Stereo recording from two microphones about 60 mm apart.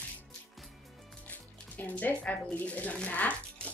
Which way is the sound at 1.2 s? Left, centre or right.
Left.